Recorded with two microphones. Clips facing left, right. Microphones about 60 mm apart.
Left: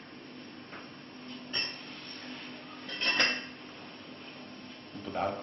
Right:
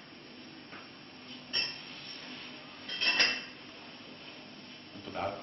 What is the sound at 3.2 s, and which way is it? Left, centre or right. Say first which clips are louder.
Dishes: left 3 dB; left.